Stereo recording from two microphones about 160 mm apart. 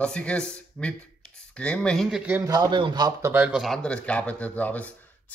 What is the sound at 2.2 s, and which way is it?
Speech, 10° right (ahead or behind).